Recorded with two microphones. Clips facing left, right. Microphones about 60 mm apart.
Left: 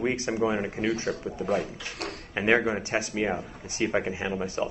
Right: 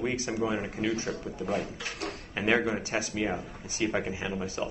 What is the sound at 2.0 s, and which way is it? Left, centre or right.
Drawer open or close, left.